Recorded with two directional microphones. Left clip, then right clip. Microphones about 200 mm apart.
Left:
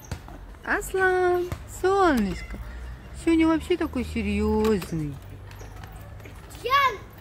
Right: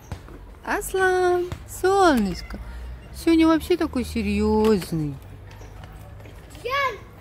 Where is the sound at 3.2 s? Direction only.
10° right (ahead or behind).